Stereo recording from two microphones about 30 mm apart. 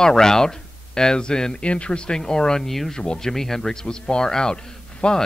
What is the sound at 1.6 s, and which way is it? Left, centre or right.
Speech, left.